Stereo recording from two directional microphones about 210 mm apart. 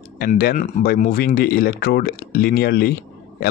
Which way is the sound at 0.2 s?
45° left (ahead or behind).